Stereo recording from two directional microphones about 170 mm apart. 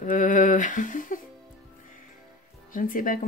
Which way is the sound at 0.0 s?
50° left (ahead or behind).